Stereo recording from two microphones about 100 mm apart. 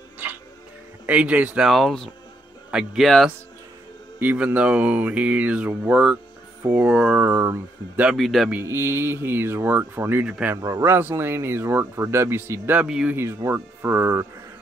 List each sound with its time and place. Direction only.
1.0 s speech: 15° right (ahead or behind)
1.7 s speech: centre (ahead or behind)
4.2 s speech: 20° right (ahead or behind)
8.2 s speech: centre (ahead or behind)
8.5 s speech: 20° right (ahead or behind)
10.2 s speech: 10° right (ahead or behind)
10.5 s speech: 30° right (ahead or behind)
12.7 s speech: 10° right (ahead or behind)
13.1 s speech: 25° right (ahead or behind)